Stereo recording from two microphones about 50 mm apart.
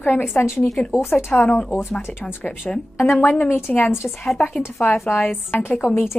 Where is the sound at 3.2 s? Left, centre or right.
Left.